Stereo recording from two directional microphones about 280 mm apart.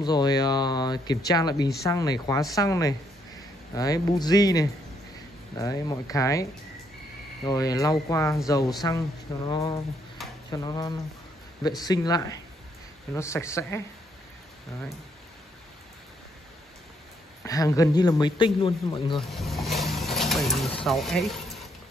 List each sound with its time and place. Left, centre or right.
0.0 s a man's voice: centre
7.4 s a man's voice: centre
17.5 s a man's voice: centre
19.1 s speech: centre